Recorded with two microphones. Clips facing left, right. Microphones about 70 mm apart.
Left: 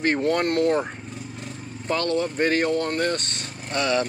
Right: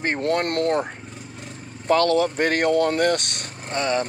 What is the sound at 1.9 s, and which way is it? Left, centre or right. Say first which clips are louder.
Speech: right 6 dB; right.